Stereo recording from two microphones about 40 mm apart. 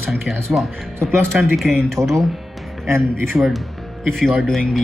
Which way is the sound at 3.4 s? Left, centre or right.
Right.